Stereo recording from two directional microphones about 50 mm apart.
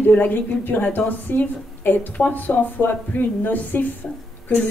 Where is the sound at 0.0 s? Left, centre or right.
Left.